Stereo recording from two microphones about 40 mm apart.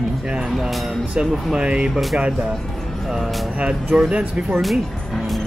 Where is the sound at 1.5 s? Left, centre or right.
Right.